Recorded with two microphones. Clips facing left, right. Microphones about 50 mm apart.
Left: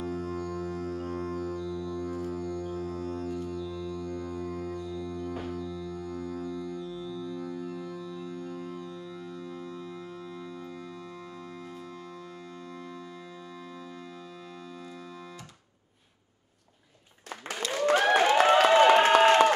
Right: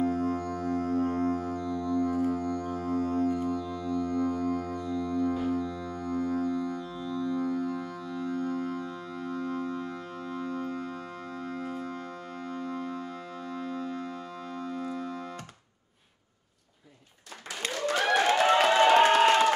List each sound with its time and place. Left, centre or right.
0.0 s music: right
12.6 s music: right
17.8 s a sound: left